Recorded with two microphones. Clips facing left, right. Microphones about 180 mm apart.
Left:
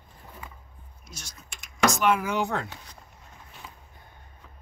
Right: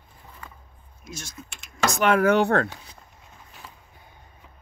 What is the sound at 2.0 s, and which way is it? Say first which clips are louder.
Speech: right 6 dB; 65° right (ahead or behind).